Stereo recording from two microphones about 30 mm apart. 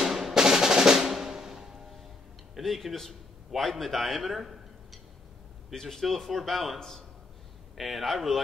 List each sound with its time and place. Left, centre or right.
0.1 s music: centre
0.4 s music: right
1.1 s drum: centre
2.5 s a man's voice: centre
5.7 s a man's voice: centre